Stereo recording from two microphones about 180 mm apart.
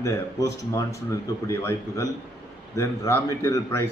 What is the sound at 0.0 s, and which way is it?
A man's voice, 15° left (ahead or behind).